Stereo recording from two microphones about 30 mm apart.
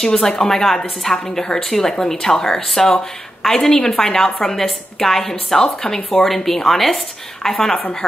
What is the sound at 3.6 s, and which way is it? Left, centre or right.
Speech, centre.